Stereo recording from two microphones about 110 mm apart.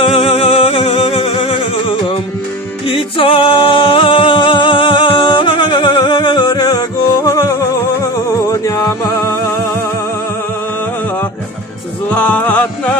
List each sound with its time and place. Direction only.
0.0 s music: 55° left (ahead or behind)
2.9 s a capella: 55° left (ahead or behind); by 7.5 s 35° left (ahead or behind)
8.0 s music: 30° left (ahead or behind)
12.1 s music: 15° left (ahead or behind)